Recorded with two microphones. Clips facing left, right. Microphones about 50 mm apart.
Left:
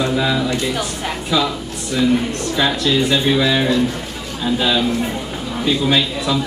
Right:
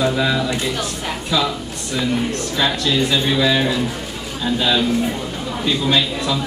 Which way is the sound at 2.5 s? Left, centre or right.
Centre.